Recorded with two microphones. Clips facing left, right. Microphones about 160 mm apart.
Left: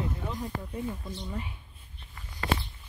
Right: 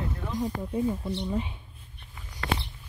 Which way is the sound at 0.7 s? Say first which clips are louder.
Right 7 dB; 25° right (ahead or behind).